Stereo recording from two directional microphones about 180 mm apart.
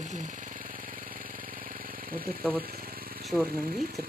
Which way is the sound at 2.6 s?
55° right (ahead or behind).